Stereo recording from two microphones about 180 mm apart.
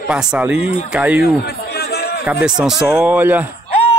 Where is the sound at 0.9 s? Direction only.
10° right (ahead or behind).